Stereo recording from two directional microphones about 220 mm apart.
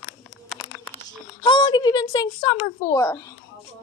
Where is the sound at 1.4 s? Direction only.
20° left (ahead or behind).